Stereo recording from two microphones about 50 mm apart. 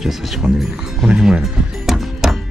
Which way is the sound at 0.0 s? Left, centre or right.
Centre.